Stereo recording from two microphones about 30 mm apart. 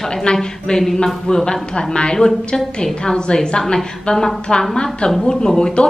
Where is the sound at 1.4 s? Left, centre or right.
Left.